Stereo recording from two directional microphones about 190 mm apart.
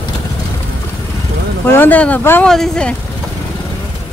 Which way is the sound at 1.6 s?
10° left (ahead or behind).